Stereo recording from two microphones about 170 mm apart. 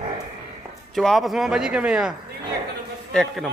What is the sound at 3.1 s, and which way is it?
Speech, 5° left (ahead or behind).